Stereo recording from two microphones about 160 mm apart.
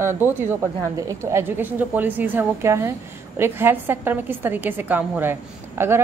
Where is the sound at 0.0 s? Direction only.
15° right (ahead or behind).